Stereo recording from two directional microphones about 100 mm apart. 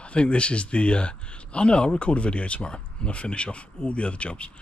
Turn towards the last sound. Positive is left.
turn(degrees=10)  # may be behind; listen again after turning